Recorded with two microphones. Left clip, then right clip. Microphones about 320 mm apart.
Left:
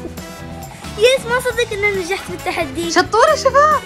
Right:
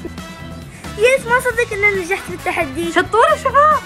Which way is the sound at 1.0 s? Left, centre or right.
Centre.